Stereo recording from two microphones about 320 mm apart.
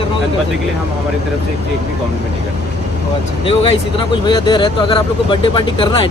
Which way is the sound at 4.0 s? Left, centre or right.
Centre.